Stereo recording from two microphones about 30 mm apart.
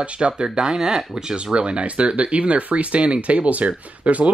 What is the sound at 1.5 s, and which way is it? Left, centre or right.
Speech, right.